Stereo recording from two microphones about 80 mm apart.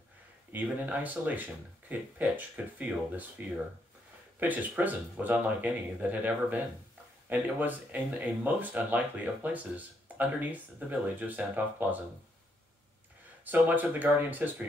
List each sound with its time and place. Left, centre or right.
0.5 s speech: right
4.4 s speech: right
13.5 s speech: right